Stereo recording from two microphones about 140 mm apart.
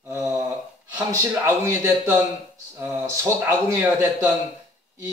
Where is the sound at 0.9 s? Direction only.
20° right (ahead or behind).